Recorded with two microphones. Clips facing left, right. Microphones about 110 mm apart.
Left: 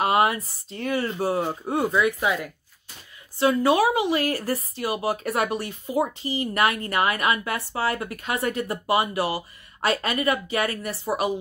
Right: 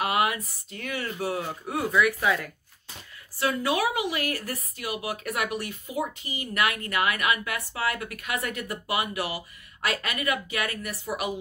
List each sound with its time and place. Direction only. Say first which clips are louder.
0.0 s speech: left 5 dB; 35° left (ahead or behind)
3.3 s speech: left 7 dB; 25° left (ahead or behind)